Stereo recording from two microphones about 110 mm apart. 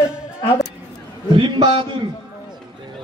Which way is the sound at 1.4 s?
45° right (ahead or behind).